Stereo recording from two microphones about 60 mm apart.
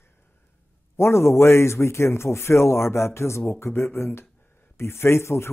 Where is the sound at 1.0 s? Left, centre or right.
Left.